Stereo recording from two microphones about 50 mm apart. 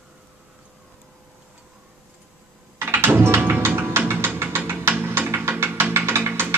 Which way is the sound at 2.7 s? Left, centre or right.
Right.